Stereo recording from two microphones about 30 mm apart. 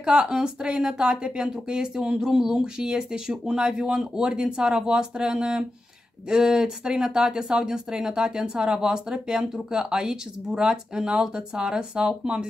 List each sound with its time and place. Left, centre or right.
0.0 s speech: right